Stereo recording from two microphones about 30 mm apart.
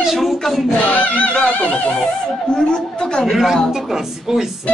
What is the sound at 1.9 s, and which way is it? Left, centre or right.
Speech, left.